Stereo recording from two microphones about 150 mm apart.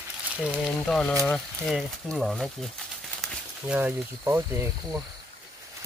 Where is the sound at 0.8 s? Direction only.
5° left (ahead or behind).